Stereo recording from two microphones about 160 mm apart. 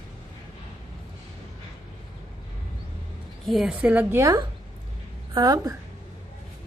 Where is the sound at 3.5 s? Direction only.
5° right (ahead or behind); by 5.7 s 25° right (ahead or behind).